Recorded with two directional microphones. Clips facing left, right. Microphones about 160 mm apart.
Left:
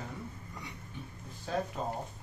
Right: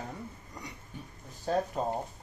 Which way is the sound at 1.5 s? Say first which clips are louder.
Right 5 dB; 45° right (ahead or behind).